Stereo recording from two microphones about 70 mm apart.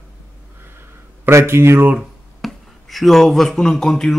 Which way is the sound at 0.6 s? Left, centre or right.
Right.